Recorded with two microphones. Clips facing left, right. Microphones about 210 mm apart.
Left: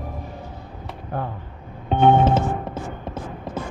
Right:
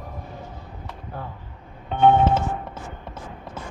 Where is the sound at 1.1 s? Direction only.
55° left (ahead or behind).